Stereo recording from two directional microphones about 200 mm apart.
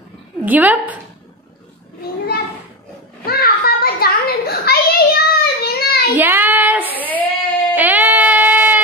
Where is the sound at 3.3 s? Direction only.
50° left (ahead or behind).